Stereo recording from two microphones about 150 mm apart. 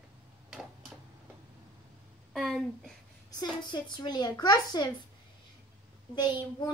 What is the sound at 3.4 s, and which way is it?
A woman's voice, 30° left (ahead or behind).